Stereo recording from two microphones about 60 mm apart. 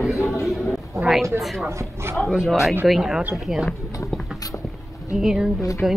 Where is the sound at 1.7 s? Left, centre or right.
Right.